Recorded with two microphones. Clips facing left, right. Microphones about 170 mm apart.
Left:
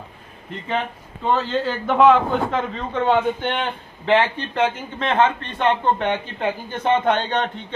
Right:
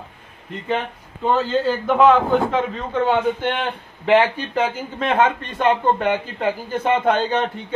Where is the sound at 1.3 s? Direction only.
Centre (ahead or behind).